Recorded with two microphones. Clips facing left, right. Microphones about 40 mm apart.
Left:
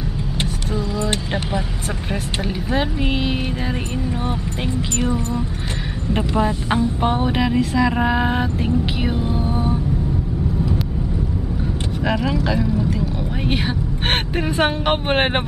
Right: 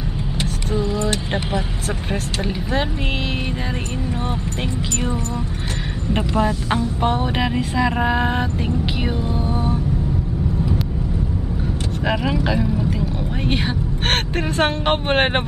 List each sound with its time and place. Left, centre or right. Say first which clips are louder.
1.0 s vehicle: even; centre
2.4 s speech: left 1 dB; centre
6.3 s speech: even; centre
7.3 s a sound: left 2 dB; centre
7.9 s speech: left 1 dB; centre
12.0 s speech: even; centre